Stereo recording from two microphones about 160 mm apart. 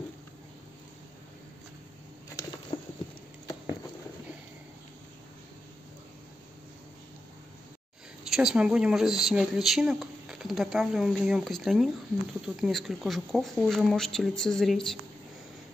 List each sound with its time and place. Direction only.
2.7 s patter: 30° left (ahead or behind)
8.2 s speech: 5° right (ahead or behind)